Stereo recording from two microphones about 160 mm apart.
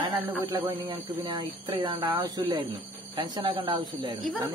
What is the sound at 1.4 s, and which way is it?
A man's voice, 30° right (ahead or behind).